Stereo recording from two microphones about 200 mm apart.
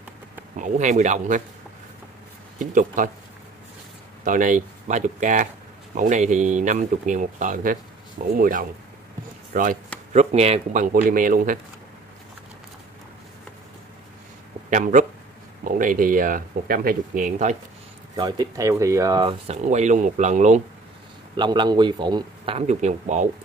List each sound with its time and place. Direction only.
0.6 s speech: 35° right (ahead or behind)
2.6 s speech: 40° right (ahead or behind)
4.2 s speech: 40° right (ahead or behind)
10.1 s speech: 30° right (ahead or behind)
14.7 s speech: 40° right (ahead or behind)
18.1 s speech: 20° right (ahead or behind); by 20.6 s 35° right (ahead or behind)
21.4 s a man's voice: 20° right (ahead or behind); by 23.2 s 35° right (ahead or behind)